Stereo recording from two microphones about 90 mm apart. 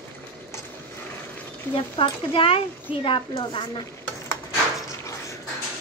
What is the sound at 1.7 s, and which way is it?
A woman's voice, 75° left (ahead or behind).